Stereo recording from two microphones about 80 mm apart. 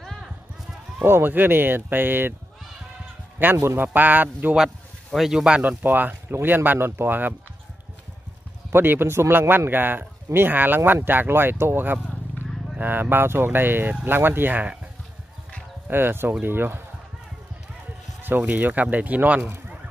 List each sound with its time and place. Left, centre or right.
0.0 s clip-clop: centre
1.0 s speech: right
3.5 s speech: right
5.1 s speech: centre
5.6 s speech: right
8.7 s speech: right
15.9 s speech: right
18.2 s speech: right